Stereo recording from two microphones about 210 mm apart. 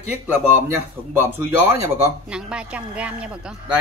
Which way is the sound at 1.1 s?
10° right (ahead or behind).